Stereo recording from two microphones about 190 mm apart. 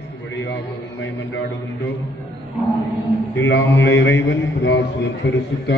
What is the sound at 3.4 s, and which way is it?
A man's voice, 80° left.